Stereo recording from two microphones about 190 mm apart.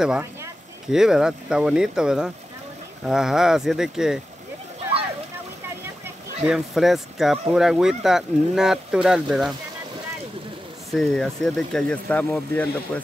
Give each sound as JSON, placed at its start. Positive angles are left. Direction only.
{"t": 0.9, "sound": "speech", "side_deg": 0}
{"t": 6.0, "sound": "speech", "side_deg": -5}
{"t": 10.9, "sound": "speech", "side_deg": 0}